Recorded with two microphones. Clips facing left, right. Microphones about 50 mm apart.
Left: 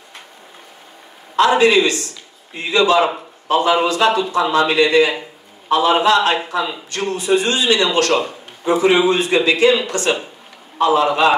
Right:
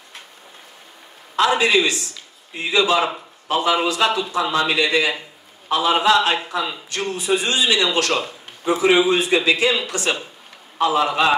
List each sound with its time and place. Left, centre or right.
1.3 s a man's voice: centre